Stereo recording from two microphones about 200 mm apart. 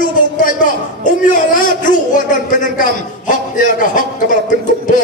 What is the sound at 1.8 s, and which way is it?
A man's voice, 40° left (ahead or behind).